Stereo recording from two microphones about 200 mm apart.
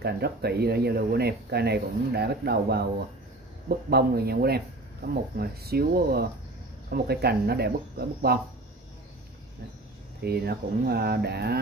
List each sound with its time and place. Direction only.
0.0 s speech: 55° right (ahead or behind)
10.2 s speech: 50° right (ahead or behind)